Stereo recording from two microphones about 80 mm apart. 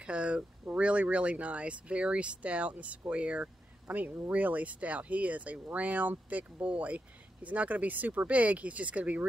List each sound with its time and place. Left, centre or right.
0.0 s speech: centre